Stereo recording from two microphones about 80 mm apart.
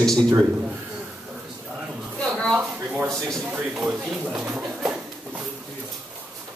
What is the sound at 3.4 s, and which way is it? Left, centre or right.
Speech, centre.